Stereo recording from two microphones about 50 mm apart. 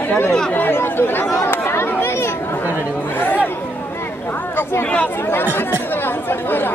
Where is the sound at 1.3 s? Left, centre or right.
Left.